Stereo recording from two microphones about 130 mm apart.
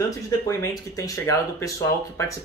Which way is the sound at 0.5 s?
25° left (ahead or behind).